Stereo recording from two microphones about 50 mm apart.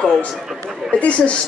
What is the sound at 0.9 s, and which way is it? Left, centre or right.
Speech, left.